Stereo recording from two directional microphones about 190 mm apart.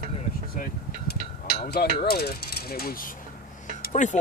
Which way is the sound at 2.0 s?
55° left (ahead or behind).